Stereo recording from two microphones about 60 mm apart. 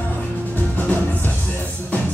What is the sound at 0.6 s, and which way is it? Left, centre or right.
Music, left.